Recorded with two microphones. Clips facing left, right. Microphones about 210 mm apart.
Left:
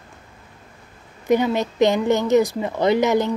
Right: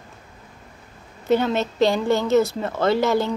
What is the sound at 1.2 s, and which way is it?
Speech, 15° left (ahead or behind).